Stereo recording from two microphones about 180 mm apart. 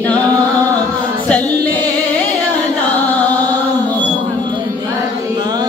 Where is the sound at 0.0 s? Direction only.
10° left (ahead or behind).